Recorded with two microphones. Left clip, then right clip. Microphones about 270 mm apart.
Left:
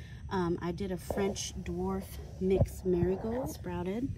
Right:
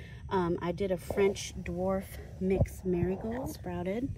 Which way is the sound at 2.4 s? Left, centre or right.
Right.